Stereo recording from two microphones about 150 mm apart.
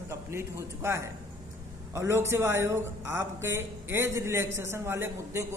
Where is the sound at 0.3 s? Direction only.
15° right (ahead or behind).